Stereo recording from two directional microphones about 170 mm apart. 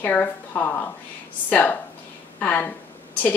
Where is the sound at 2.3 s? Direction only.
10° left (ahead or behind).